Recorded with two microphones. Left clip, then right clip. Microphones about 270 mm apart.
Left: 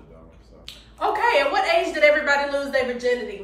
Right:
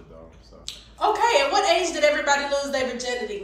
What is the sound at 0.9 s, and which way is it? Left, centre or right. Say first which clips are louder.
A woman's voice: even; centre.